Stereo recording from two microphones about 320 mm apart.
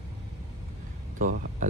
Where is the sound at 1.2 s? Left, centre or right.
Right.